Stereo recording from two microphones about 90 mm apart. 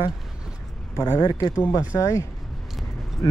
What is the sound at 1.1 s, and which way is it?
Speech, 45° left (ahead or behind).